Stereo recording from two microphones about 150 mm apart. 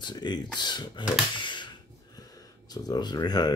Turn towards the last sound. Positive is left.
turn(degrees=25)  # may be behind; listen again after turning